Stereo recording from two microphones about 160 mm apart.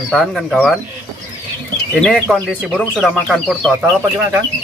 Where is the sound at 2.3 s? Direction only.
5° right (ahead or behind).